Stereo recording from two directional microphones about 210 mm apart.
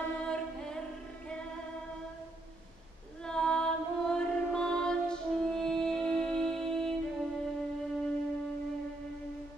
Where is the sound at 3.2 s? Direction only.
5° left (ahead or behind).